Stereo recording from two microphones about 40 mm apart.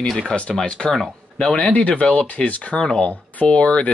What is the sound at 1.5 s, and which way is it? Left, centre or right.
Speech, left.